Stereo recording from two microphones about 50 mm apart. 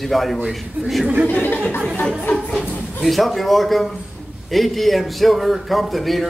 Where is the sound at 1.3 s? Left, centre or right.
Left.